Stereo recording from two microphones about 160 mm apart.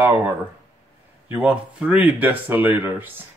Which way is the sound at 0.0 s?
15° right (ahead or behind).